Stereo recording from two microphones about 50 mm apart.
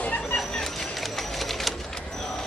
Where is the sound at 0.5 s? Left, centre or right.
Centre.